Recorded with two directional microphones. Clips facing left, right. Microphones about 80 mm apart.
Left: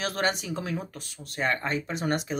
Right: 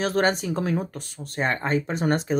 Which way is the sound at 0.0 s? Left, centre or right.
Right.